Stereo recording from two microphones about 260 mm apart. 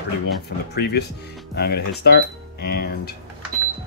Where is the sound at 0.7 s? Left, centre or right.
Left.